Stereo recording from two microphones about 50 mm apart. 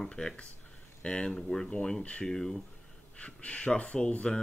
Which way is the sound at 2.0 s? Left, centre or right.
Left.